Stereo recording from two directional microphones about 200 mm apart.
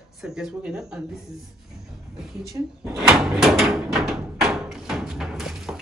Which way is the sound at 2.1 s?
Centre (ahead or behind).